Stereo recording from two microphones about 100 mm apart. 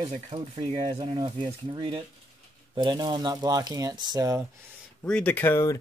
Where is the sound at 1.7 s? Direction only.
65° right (ahead or behind).